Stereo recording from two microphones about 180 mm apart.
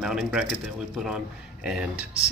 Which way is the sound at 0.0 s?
5° right (ahead or behind).